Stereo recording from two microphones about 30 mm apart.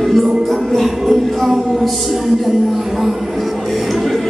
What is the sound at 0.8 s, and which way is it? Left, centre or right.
Music, centre.